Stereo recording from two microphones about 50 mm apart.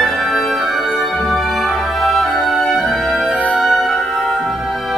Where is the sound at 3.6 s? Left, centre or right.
Centre.